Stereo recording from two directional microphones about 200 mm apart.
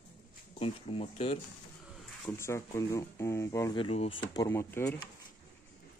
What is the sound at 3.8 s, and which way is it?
Speech, 30° left (ahead or behind).